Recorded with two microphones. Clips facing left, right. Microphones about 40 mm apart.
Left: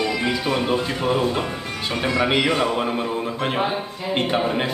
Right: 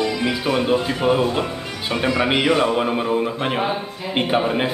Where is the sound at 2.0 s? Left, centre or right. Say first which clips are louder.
Right 1 dB; centre.